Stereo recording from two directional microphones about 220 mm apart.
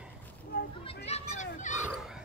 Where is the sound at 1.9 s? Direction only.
5° right (ahead or behind).